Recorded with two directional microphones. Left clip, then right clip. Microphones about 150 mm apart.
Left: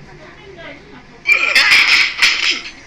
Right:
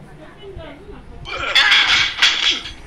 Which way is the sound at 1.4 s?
25° right (ahead or behind).